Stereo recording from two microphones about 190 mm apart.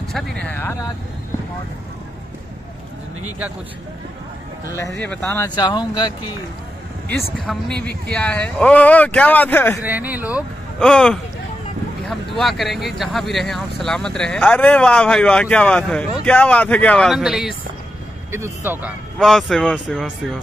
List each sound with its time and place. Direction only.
0.1 s speech: 5° left (ahead or behind)
4.6 s speech: 15° left (ahead or behind)
5.5 s speech: 20° left (ahead or behind)
7.3 s speech: 5° left (ahead or behind)
9.8 s speech: 10° right (ahead or behind)
10.8 s speech: 5° left (ahead or behind)